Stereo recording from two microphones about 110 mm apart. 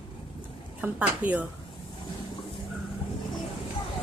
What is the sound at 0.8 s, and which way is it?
Speech, 15° right (ahead or behind).